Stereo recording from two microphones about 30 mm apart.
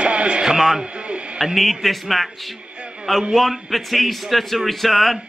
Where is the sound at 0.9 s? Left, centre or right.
Right.